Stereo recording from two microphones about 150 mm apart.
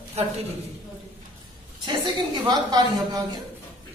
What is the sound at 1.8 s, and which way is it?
Speech, 30° right (ahead or behind).